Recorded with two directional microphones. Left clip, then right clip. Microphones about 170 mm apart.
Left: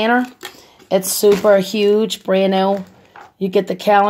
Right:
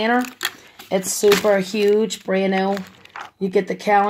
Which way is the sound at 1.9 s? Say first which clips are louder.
Left 4 dB; 30° left (ahead or behind).